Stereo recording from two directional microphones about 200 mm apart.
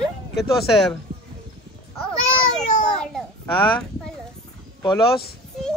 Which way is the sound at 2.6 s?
5° left (ahead or behind).